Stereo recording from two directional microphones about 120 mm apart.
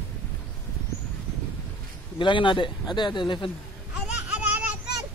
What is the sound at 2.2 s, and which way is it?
Speech, 45° left (ahead or behind).